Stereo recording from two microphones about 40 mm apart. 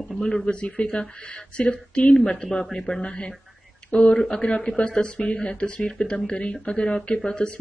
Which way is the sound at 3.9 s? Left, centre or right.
Left.